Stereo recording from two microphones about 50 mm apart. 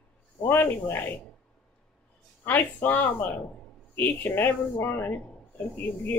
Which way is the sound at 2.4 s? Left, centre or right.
Left.